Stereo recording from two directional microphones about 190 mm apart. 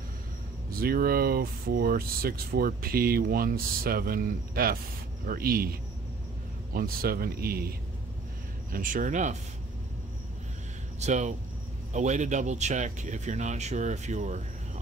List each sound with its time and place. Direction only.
0.7 s speech: 50° right (ahead or behind)
8.7 s speech: 45° right (ahead or behind)
11.0 s speech: 40° right (ahead or behind)